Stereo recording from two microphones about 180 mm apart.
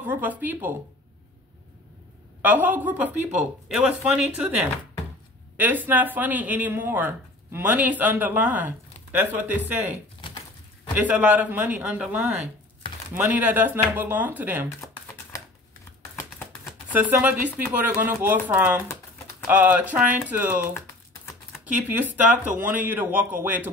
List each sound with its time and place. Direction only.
0.0 s speech: 10° right (ahead or behind)
2.4 s speech: 10° right (ahead or behind)
11.0 s speech: 10° right (ahead or behind)
16.6 s a sound: 10° right (ahead or behind)
17.8 s speech: 10° right (ahead or behind)
21.6 s speech: 10° right (ahead or behind)